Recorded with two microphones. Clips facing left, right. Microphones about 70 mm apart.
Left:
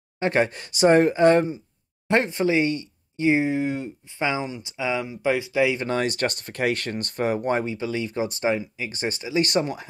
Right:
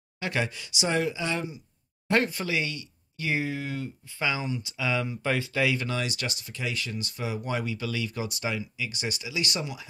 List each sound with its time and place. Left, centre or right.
0.2 s speech: left
2.0 s speech: left
5.9 s speech: left